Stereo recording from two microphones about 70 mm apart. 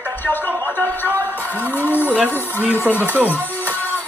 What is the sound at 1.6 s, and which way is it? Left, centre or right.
Speech, right.